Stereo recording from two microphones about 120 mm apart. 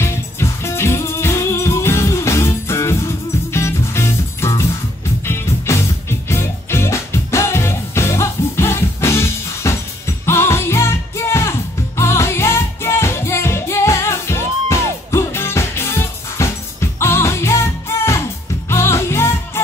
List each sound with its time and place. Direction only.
0.0 s music: 20° left (ahead or behind)